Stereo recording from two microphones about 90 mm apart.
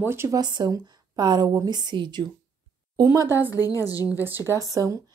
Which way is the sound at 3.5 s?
40° left (ahead or behind).